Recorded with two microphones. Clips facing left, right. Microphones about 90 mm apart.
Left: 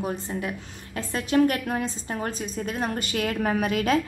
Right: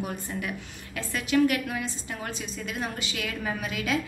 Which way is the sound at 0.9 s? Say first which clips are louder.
Left 2 dB; 40° left (ahead or behind).